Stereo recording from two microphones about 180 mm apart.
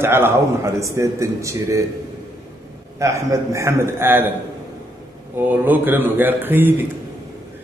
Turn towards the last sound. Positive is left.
turn(degrees=-10)  # may be behind; listen again after turning